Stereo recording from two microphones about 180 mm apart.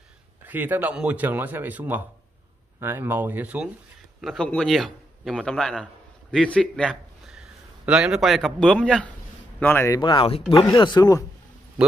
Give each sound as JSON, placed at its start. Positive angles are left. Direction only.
{"t": 0.5, "sound": "a man's voice", "side_deg": -10}